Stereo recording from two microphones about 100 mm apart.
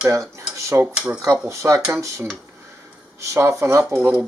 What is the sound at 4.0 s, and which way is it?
Cutlery, 10° right (ahead or behind).